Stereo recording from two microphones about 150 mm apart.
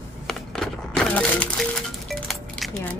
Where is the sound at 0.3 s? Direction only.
5° left (ahead or behind).